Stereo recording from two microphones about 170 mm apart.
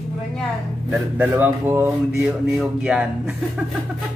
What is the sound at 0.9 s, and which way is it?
Speech, 10° right (ahead or behind).